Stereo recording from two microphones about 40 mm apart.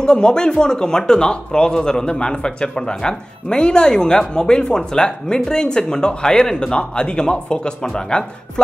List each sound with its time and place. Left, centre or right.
0.0 s speech: left